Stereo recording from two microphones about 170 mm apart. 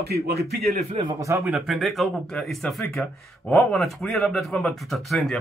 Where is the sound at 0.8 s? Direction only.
35° right (ahead or behind).